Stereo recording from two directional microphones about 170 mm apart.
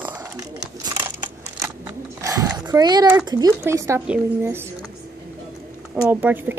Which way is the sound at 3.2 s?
25° right (ahead or behind).